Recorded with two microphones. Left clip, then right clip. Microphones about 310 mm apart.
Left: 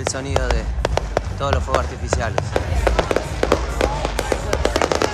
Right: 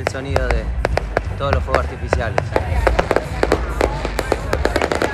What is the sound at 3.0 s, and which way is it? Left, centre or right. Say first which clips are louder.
Fireworks: right 2 dB; centre.